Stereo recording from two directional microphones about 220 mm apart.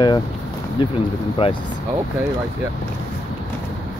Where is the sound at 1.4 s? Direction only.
25° left (ahead or behind).